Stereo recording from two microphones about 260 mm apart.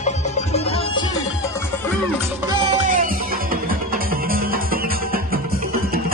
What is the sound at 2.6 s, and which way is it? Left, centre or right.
Music, right.